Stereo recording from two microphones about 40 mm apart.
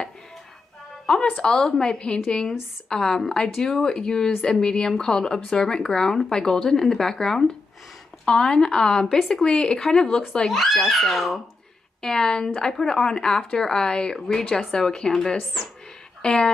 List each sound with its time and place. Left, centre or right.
1.3 s a woman's voice: left
10.5 s speech: centre
12.0 s a woman's voice: centre
14.2 s speech: centre